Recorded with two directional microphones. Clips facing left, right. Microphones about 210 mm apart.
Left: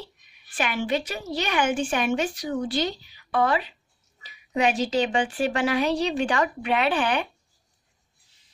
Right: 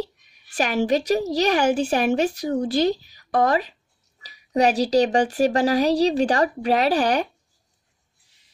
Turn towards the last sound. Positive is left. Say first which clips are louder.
# right 4 dB
turn(degrees=-40)  # may be behind; listen again after turning